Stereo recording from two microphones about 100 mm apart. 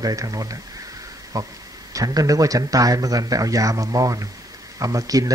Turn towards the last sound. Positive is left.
turn(degrees=-35)  # may be behind; listen again after turning